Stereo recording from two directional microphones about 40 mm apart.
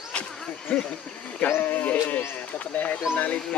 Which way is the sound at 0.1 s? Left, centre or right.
Left.